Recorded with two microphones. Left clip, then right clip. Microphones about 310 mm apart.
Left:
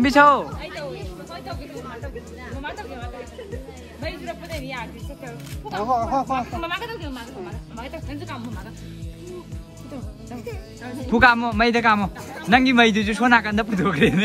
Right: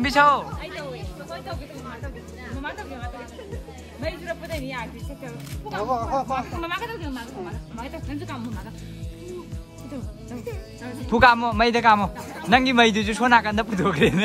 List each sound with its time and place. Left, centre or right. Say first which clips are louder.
0.0 s speech: left 3 dB; centre
5.9 s speech: left 3 dB; left
6.4 s speech: left 1 dB; centre
11.1 s a man's voice: even; centre